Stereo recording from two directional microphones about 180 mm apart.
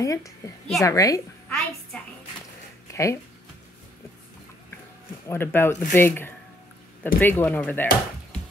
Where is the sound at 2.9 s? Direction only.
15° left (ahead or behind).